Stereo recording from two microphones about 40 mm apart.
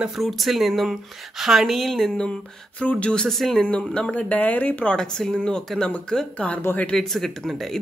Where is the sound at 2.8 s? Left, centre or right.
Left.